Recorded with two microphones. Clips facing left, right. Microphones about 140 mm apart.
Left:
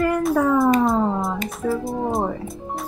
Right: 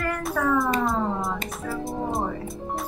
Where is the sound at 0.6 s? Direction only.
Centre (ahead or behind).